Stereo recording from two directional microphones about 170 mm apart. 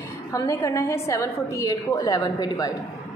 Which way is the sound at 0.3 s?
20° left (ahead or behind).